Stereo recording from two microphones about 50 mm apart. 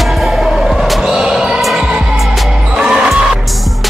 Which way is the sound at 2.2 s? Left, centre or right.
Centre.